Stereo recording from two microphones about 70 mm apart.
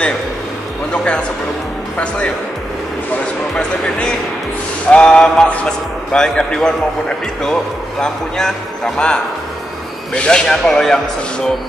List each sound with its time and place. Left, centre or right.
0.9 s a sound: centre
2.0 s music: centre
4.9 s a man's voice: centre